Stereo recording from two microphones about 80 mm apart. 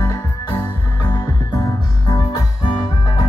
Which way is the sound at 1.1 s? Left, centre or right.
Left.